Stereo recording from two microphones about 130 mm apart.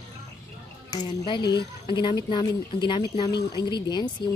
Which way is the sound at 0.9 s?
35° left (ahead or behind).